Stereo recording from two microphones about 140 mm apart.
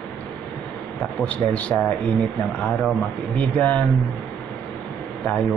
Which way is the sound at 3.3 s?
10° left (ahead or behind).